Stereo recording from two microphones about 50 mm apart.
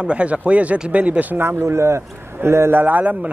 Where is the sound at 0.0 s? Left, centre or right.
Right.